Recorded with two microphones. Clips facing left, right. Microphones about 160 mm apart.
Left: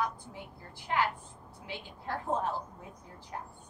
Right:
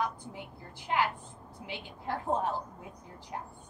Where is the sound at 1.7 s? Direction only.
15° right (ahead or behind).